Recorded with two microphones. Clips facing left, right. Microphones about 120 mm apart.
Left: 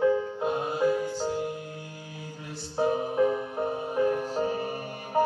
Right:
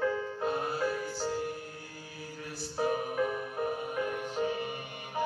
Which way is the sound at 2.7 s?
25° left (ahead or behind).